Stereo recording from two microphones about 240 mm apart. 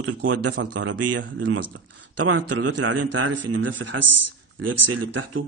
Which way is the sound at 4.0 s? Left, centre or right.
Right.